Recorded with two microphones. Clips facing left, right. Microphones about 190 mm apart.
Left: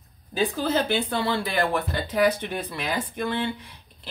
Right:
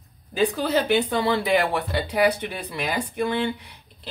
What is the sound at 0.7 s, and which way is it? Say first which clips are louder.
Speech: right 3 dB; 15° right (ahead or behind).